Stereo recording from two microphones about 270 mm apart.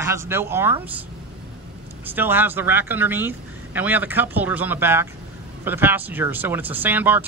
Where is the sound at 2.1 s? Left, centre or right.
Centre.